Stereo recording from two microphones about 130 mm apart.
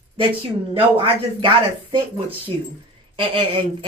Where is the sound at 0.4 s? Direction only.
45° right (ahead or behind).